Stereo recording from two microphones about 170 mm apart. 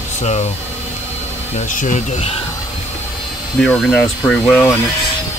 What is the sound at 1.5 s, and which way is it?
Speech, 45° left (ahead or behind).